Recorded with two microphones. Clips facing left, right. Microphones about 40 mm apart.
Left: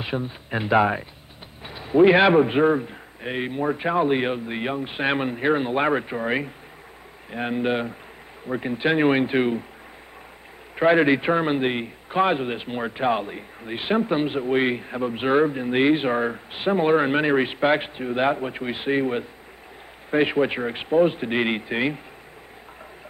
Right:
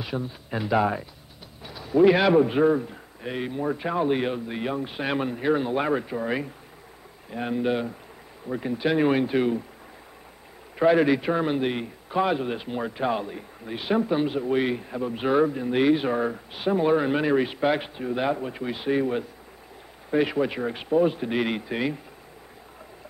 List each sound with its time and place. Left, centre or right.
0.0 s a man's voice: left
10.8 s a man's voice: left